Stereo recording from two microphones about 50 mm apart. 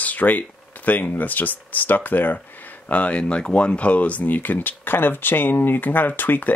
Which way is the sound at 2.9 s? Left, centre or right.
Left.